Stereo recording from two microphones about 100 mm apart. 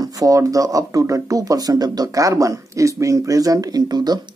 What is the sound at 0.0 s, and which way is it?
Speech, 35° right (ahead or behind).